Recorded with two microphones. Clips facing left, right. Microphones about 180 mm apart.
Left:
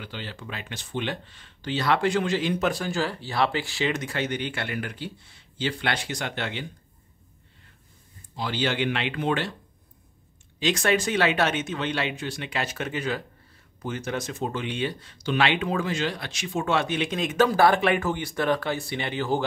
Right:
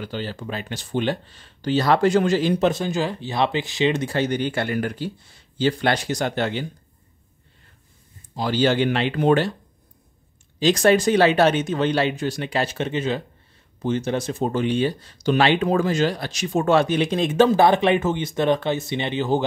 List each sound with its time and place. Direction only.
0.0 s speech: 40° right (ahead or behind)
2.7 s speech: 20° right (ahead or behind); by 6.7 s 40° right (ahead or behind)
8.4 s speech: 40° right (ahead or behind)
10.6 s speech: 35° right (ahead or behind); by 19.4 s 20° right (ahead or behind)